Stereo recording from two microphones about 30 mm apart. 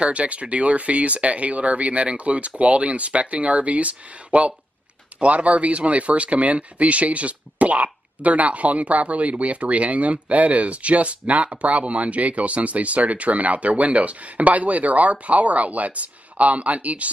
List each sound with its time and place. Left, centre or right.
0.0 s speech: right